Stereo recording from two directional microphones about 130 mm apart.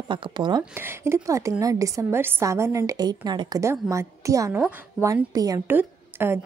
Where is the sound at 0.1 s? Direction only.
35° right (ahead or behind).